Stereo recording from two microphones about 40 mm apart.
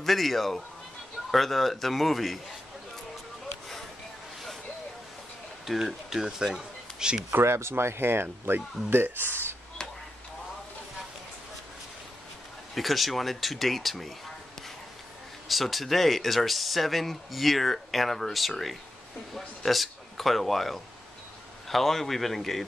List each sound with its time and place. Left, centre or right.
0.0 s speech: centre
5.7 s speech: centre
7.3 s speech: right
9.8 s a sound: centre
12.7 s speech: centre
15.4 s speech: centre